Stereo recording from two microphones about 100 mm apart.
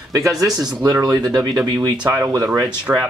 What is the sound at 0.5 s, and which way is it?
Speech, 5° right (ahead or behind).